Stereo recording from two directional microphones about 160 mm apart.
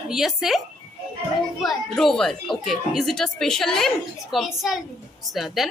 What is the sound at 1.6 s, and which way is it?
Speech, centre (ahead or behind).